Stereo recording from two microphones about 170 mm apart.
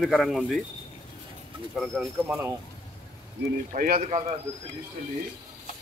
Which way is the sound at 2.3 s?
15° right (ahead or behind).